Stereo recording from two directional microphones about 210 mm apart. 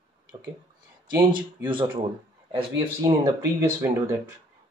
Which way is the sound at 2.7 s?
15° right (ahead or behind).